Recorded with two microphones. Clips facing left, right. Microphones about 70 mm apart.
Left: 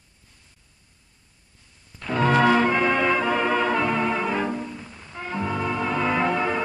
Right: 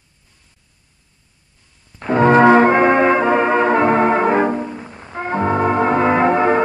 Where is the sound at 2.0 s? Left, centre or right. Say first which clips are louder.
Right 8 dB; right.